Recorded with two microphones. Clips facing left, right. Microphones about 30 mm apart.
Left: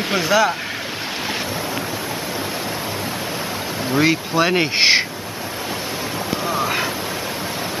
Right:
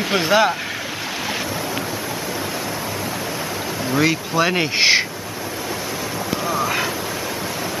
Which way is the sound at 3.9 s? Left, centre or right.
Centre.